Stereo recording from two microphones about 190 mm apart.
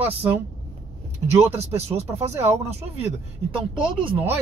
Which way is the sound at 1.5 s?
35° right (ahead or behind).